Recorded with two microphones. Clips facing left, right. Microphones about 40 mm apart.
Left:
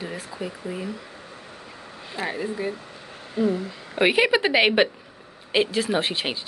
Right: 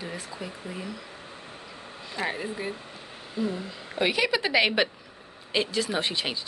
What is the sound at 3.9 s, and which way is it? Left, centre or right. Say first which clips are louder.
Speech: left 6 dB; left.